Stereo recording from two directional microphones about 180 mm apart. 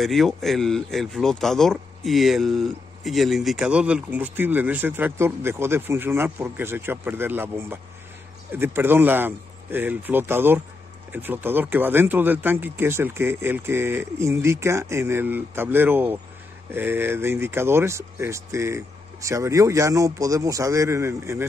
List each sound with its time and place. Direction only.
0.0 s speech: centre (ahead or behind); by 21.5 s 15° right (ahead or behind)